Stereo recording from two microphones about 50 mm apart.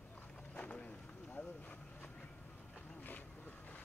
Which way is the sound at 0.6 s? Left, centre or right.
Left.